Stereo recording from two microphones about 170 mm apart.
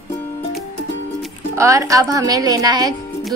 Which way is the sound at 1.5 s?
20° right (ahead or behind).